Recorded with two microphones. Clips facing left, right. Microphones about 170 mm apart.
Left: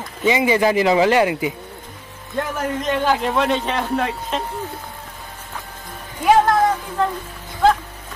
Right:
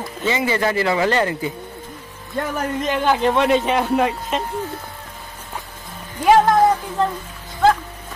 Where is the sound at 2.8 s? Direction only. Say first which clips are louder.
Right 1 dB; centre (ahead or behind).